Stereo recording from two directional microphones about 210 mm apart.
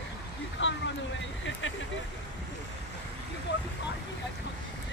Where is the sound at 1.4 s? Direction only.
65° left (ahead or behind).